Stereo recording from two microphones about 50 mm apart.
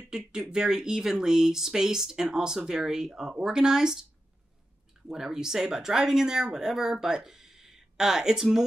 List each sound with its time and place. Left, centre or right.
0.3 s speech: centre
5.0 s speech: centre